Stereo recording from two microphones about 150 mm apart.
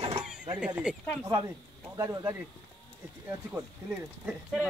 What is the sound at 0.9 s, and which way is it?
Speech, 5° right (ahead or behind).